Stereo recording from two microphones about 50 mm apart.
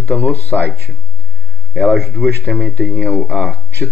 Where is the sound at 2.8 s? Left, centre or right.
Right.